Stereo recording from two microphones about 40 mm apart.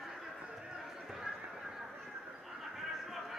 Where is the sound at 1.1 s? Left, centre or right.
Centre.